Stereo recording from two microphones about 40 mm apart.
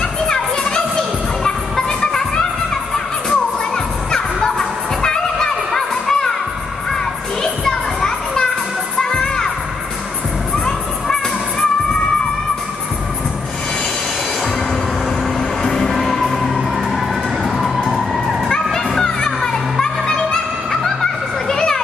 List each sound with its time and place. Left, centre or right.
0.3 s music: centre
7.6 s children playing: centre
9.1 s music: centre
10.5 s music: centre
15.6 s music: centre
16.9 s vehicle: centre
18.5 s music: centre